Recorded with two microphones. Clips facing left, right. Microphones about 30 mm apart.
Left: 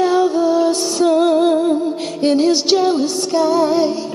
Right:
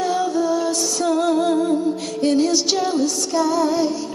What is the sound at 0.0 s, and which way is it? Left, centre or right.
Music, left.